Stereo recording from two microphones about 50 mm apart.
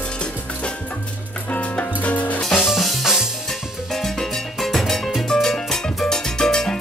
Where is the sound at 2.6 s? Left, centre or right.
Centre.